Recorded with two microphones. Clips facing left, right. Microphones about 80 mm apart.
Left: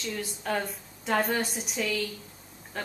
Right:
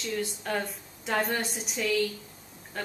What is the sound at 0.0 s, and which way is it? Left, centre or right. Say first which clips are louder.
Speech: right 2 dB; centre.